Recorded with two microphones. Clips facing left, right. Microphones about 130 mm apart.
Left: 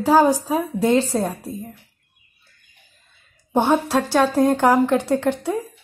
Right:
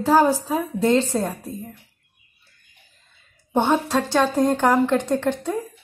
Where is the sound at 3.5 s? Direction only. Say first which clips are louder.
Left 2 dB; 10° left (ahead or behind).